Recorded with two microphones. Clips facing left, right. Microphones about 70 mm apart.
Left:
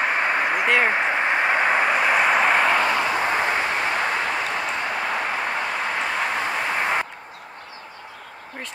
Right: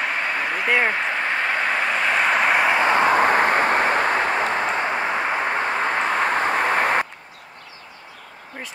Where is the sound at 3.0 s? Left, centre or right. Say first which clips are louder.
Right 5 dB; right.